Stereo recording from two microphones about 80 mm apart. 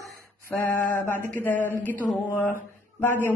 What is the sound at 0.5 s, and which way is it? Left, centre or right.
Mantra, left.